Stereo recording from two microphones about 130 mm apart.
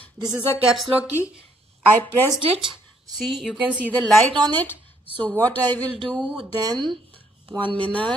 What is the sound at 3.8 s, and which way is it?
Speech, 10° left (ahead or behind).